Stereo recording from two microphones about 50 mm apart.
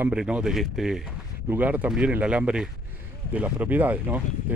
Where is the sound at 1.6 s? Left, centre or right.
Right.